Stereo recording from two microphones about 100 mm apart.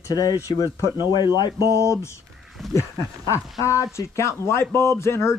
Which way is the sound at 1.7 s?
30° left (ahead or behind).